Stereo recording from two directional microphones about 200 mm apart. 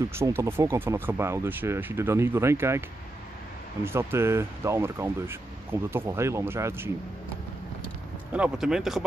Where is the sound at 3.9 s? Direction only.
10° right (ahead or behind).